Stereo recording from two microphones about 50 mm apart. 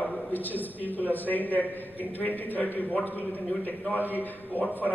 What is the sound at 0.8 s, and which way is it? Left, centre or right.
Speech, right.